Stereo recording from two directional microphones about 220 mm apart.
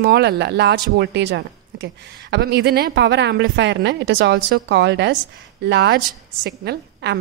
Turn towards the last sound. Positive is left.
turn(degrees=-45)  # may be behind; listen again after turning